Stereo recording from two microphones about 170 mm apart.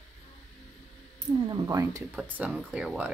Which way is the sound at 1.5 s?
20° right (ahead or behind).